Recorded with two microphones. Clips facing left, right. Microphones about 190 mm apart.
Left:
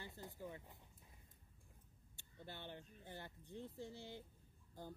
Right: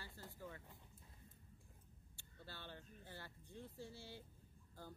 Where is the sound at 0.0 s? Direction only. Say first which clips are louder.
Left 3 dB; 20° left (ahead or behind).